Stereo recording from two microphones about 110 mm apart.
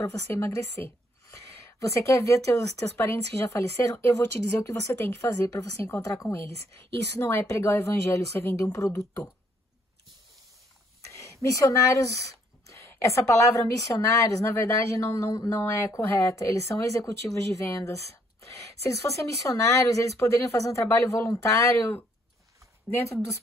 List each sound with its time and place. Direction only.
0.0 s a woman's voice: 25° left (ahead or behind)
11.1 s a sound: 30° left (ahead or behind)
11.4 s a woman's voice: 30° left (ahead or behind)